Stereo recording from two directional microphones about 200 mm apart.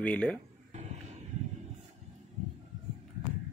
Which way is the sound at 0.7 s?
35° right (ahead or behind).